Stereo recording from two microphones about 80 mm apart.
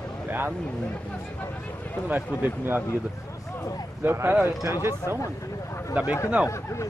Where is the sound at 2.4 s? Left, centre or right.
Right.